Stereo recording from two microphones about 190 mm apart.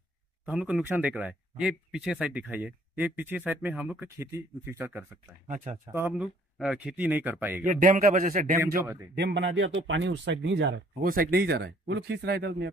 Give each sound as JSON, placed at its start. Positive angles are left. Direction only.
{"t": 0.5, "sound": "speech", "side_deg": -5}
{"t": 5.5, "sound": "speech", "side_deg": -40}
{"t": 5.9, "sound": "speech", "side_deg": -10}
{"t": 7.6, "sound": "a man's voice", "side_deg": -45}
{"t": 9.1, "sound": "speech", "side_deg": -70}
{"t": 11.0, "sound": "speech", "side_deg": -50}